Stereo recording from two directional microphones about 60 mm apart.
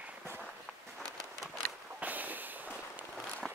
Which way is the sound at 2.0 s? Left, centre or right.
Right.